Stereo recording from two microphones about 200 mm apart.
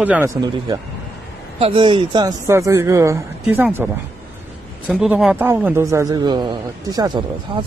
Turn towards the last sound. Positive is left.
turn(degrees=-20)  # may be behind; listen again after turning